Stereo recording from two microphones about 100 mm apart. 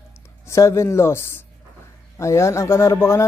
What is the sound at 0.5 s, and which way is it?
Speech, 30° left (ahead or behind).